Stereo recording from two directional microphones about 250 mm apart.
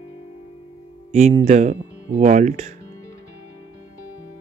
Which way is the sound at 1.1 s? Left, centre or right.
Right.